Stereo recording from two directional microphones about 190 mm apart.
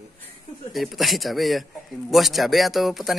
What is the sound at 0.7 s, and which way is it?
A man's voice, centre (ahead or behind).